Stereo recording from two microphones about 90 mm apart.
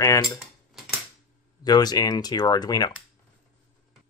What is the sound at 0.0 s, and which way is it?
Speech, 35° left (ahead or behind).